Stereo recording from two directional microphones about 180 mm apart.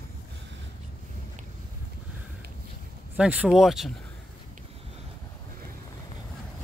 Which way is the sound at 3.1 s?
5° right (ahead or behind).